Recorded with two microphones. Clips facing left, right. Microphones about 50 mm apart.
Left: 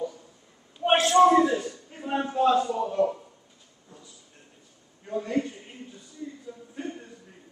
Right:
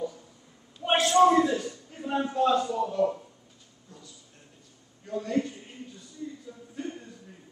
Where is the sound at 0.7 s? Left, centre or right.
Left.